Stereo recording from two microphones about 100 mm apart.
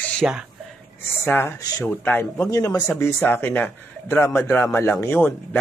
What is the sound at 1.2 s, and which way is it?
Speech, 20° left (ahead or behind).